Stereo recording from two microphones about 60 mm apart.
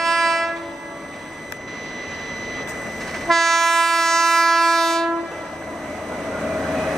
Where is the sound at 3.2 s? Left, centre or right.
Centre.